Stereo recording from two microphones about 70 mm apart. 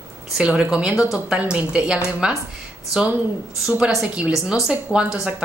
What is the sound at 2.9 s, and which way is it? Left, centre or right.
Speech, right.